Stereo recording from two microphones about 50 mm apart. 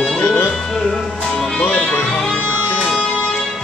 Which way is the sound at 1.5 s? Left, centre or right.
Left.